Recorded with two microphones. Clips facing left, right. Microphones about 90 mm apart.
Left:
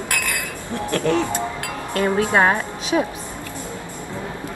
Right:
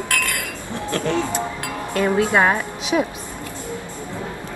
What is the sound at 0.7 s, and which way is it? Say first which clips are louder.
Chink: left 3 dB; 20° right (ahead or behind).